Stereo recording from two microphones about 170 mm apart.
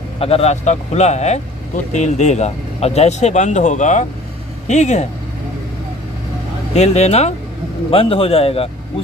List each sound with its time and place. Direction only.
0.2 s speech: 35° left (ahead or behind)
6.7 s speech: 40° left (ahead or behind)